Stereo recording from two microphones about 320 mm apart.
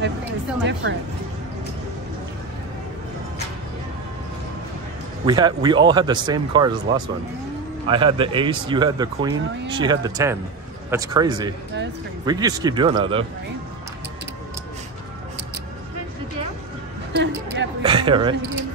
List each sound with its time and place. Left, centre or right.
5.2 s speech: centre
17.1 s a woman's voice: right
17.8 s speech: centre